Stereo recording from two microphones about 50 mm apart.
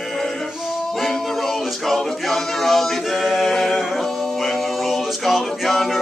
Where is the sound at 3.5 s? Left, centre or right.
Centre.